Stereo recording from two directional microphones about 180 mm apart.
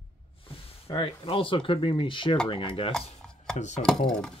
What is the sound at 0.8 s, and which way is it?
Speech, 30° left (ahead or behind).